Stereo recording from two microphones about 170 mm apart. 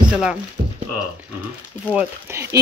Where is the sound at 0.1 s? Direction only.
5° right (ahead or behind).